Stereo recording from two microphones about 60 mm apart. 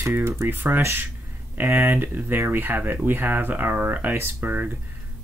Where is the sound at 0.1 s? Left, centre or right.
Right.